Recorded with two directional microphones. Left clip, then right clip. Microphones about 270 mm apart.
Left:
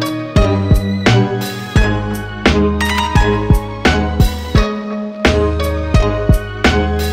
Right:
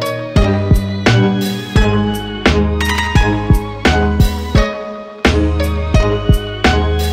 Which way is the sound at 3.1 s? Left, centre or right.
Right.